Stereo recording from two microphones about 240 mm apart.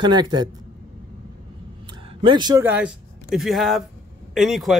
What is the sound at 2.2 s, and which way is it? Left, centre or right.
A man's voice, centre.